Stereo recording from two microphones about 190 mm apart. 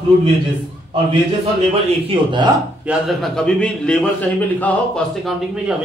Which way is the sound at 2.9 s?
Centre (ahead or behind).